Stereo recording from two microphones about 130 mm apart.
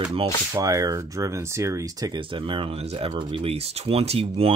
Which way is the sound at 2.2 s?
40° right (ahead or behind).